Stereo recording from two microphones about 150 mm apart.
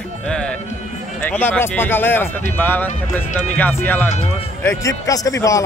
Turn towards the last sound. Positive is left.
turn(degrees=20)  # may be behind; listen again after turning